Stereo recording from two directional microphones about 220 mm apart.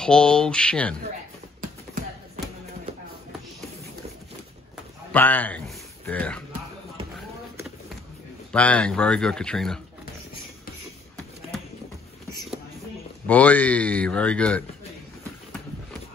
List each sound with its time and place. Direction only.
0.0 s speech: 5° left (ahead or behind)
1.6 s basketball bounce: 40° right (ahead or behind)
5.1 s speech: 5° left (ahead or behind)
8.5 s speech: 5° left (ahead or behind)
13.3 s speech: 5° left (ahead or behind)